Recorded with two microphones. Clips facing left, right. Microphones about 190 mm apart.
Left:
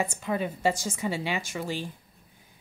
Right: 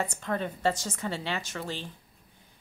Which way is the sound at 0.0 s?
10° left (ahead or behind).